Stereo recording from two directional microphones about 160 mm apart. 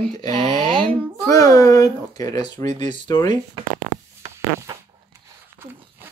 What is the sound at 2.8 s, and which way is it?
Speech, 25° left (ahead or behind).